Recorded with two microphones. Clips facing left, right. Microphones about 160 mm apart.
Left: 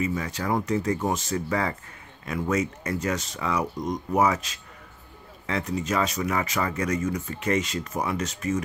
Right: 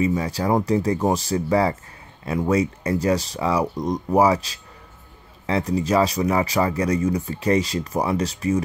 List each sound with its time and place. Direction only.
0.0 s speech: 30° right (ahead or behind)